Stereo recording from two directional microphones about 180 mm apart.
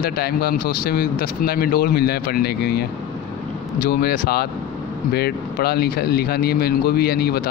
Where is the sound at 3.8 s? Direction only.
55° left (ahead or behind).